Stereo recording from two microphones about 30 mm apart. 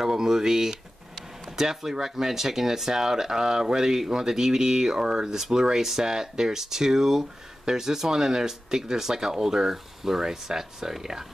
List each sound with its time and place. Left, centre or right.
0.0 s speech: centre